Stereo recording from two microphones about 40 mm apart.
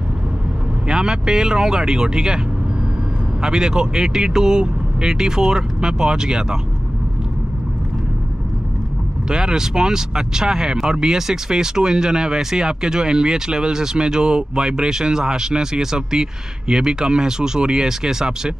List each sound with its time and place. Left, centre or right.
0.8 s speech: centre
3.4 s speech: centre
9.3 s speech: centre